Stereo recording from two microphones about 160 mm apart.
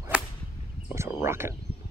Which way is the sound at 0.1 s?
10° right (ahead or behind).